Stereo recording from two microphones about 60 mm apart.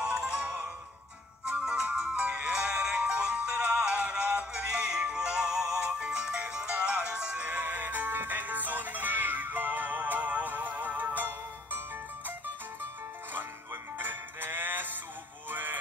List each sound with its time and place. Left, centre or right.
0.0 s music: centre
13.9 s music: right